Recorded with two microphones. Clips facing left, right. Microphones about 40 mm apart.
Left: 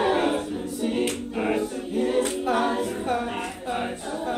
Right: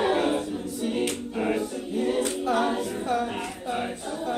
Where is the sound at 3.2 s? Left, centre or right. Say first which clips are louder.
Even; centre.